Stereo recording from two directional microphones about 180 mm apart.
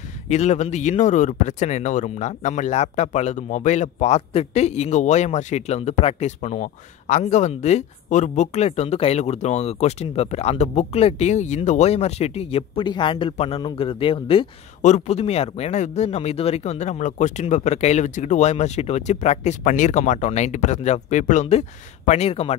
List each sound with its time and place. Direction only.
0.3 s speech: 40° left (ahead or behind)